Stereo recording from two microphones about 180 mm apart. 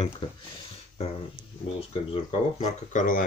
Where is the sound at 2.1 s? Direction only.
35° left (ahead or behind).